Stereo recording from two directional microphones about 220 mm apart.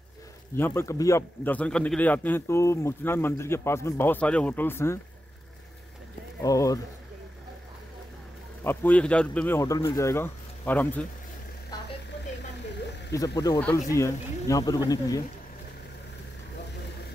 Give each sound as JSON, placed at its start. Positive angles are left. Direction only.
{"t": 0.6, "sound": "a man's voice", "side_deg": 10}
{"t": 6.4, "sound": "a man's voice", "side_deg": 15}
{"t": 8.6, "sound": "a man's voice", "side_deg": 5}
{"t": 13.4, "sound": "a man's voice", "side_deg": 10}